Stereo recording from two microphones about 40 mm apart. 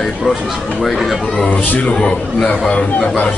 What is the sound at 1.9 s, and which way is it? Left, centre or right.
A man's voice, left.